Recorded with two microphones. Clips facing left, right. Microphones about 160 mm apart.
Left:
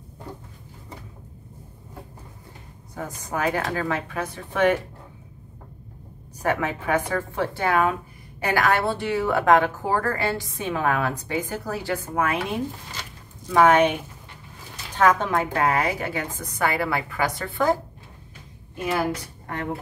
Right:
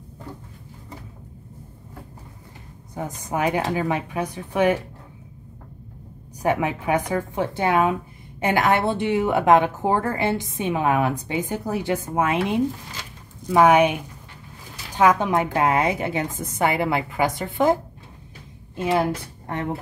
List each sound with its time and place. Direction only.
2.9 s a woman's voice: 20° right (ahead or behind)
6.4 s a woman's voice: 15° right (ahead or behind)
18.8 s a woman's voice: 25° right (ahead or behind)